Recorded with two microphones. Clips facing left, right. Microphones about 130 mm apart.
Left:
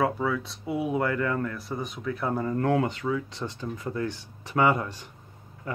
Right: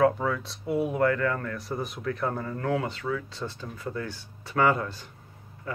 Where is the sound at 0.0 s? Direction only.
5° left (ahead or behind).